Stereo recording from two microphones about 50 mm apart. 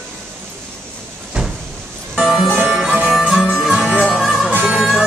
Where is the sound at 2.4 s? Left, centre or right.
Right.